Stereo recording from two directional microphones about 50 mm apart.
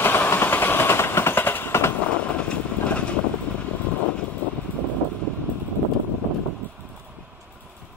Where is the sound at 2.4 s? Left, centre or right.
Left.